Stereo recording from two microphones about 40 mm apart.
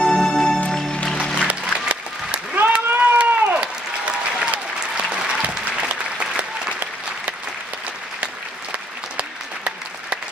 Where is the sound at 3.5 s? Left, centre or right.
Right.